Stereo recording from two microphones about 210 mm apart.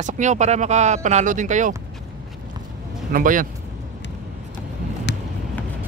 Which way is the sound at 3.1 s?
40° right (ahead or behind).